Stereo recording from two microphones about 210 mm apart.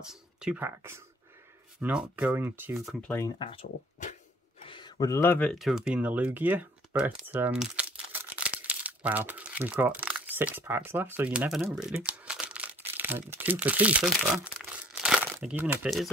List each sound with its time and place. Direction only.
0.0 s speech: 5° right (ahead or behind)
3.1 s speech: 15° left (ahead or behind); by 16.1 s centre (ahead or behind)